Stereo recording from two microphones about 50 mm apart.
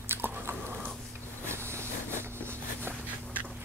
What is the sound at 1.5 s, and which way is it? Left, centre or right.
Vehicle, right.